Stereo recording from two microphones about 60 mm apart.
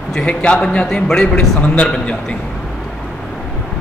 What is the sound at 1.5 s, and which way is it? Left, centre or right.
Speech, left.